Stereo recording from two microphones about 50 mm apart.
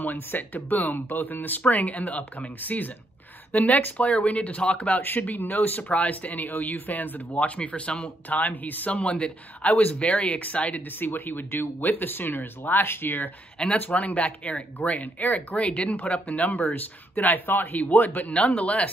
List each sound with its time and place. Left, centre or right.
0.0 s speech: left
8.3 s speech: left
11.0 s speech: left
13.6 s speech: centre; by 18.3 s left
18.3 s speech: left